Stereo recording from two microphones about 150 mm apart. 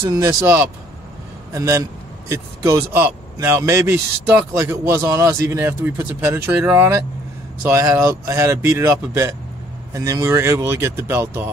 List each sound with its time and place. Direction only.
0.1 s a man's voice: 20° right (ahead or behind)